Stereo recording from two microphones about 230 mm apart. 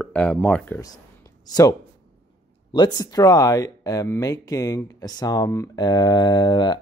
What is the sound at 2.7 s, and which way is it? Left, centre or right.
Speech, centre.